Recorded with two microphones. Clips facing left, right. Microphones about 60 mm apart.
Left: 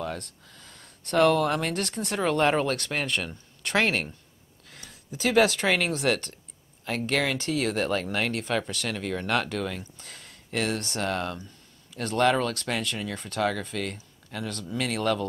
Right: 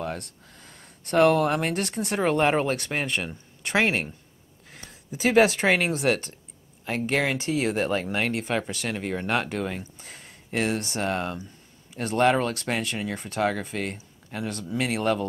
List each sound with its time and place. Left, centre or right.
0.2 s speech: centre